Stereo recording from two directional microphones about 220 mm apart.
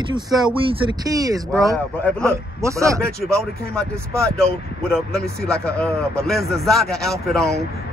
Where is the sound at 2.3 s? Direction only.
15° right (ahead or behind).